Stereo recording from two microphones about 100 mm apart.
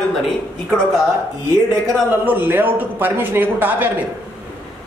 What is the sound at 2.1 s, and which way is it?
Speech, 20° right (ahead or behind).